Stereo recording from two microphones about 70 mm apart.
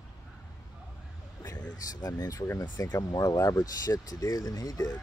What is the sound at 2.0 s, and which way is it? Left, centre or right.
Speech, left.